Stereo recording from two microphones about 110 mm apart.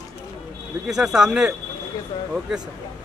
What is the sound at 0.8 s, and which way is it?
Speech, 5° right (ahead or behind).